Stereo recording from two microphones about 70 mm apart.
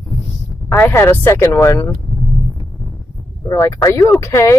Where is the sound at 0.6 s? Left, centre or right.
Left.